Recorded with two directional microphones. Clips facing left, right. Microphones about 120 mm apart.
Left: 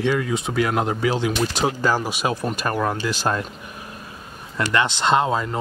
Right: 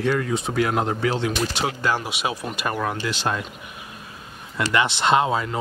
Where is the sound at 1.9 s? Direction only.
40° left (ahead or behind).